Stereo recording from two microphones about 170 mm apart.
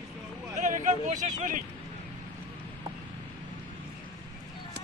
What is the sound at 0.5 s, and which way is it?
Speech, 45° right (ahead or behind).